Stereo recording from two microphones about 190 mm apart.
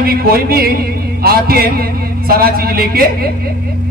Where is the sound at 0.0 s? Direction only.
55° right (ahead or behind).